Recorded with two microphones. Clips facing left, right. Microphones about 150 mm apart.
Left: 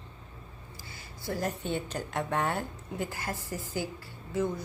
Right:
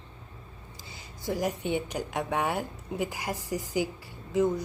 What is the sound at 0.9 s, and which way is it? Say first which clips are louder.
Speech: right 3 dB; 20° right (ahead or behind).